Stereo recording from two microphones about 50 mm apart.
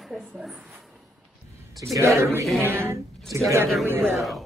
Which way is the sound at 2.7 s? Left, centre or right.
Right.